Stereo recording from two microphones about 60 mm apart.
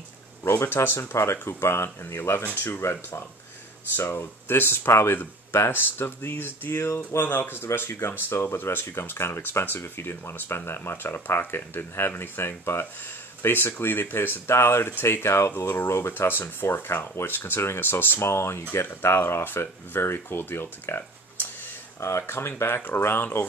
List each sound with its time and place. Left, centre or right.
0.4 s speech: left
2.8 s speech: left
3.9 s speech: left